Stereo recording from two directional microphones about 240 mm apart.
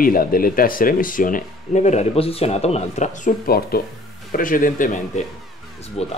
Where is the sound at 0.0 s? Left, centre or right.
Left.